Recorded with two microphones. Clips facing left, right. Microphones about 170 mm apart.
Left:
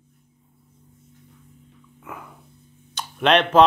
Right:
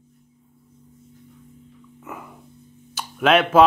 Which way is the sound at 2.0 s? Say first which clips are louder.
Right 2 dB; 5° right (ahead or behind).